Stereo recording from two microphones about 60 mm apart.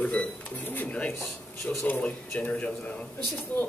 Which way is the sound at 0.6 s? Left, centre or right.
Left.